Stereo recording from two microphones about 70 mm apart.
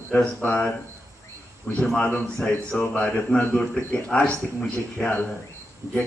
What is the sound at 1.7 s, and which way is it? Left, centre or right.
A man's voice, centre.